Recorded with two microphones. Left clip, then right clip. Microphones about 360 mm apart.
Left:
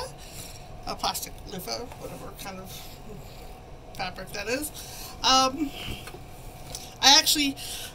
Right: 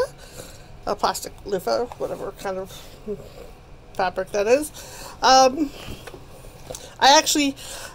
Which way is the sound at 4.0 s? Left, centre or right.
Centre.